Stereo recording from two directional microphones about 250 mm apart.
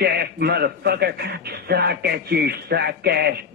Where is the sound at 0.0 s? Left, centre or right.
Right.